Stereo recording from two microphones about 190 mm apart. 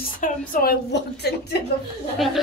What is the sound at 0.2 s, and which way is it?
A woman's voice, 45° left (ahead or behind).